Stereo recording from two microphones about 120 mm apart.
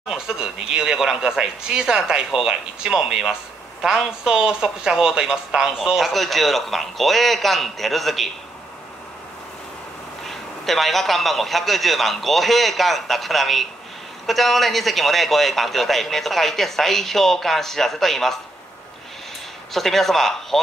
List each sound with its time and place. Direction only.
0.1 s speech: 5° right (ahead or behind)
10.2 s speech: centre (ahead or behind)
19.7 s speech: centre (ahead or behind)